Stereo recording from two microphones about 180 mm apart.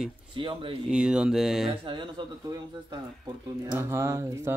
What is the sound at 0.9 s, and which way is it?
Speech, 5° right (ahead or behind).